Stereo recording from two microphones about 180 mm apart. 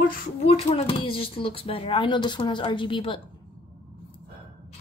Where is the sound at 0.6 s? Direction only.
35° left (ahead or behind).